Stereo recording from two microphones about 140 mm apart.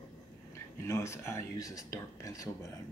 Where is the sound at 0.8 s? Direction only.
20° left (ahead or behind).